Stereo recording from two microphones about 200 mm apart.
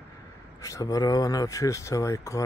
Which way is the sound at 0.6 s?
15° left (ahead or behind).